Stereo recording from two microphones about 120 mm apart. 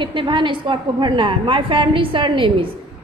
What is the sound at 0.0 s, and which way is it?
A woman's voice, 45° right (ahead or behind).